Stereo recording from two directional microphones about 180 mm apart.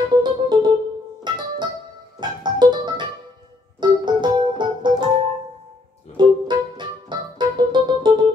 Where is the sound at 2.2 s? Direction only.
25° right (ahead or behind).